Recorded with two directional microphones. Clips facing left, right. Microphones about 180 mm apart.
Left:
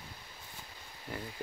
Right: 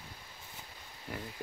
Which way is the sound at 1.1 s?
Centre (ahead or behind).